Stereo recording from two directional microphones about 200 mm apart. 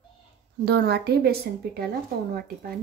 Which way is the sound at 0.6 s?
55° right (ahead or behind).